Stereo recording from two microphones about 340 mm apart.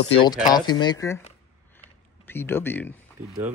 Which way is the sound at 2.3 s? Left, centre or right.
Centre.